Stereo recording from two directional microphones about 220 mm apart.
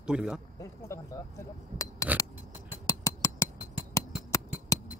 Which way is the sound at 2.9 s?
15° left (ahead or behind).